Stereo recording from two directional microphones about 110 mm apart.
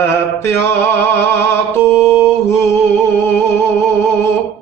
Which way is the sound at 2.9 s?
20° left (ahead or behind).